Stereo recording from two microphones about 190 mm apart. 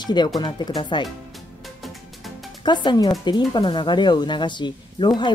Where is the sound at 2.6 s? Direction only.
25° left (ahead or behind).